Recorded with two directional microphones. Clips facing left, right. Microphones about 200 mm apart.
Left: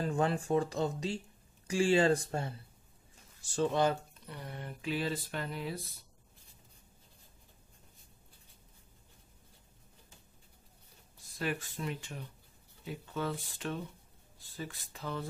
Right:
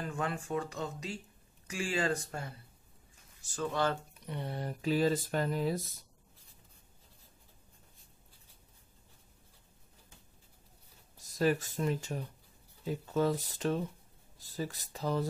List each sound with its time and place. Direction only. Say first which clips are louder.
0.0 s speech: left 5 dB; 30° left (ahead or behind)
4.1 s a sound: right 6 dB; 20° right (ahead or behind)
4.5 s speech: right 5 dB; 40° right (ahead or behind)
11.3 s speech: right 7 dB; 40° right (ahead or behind)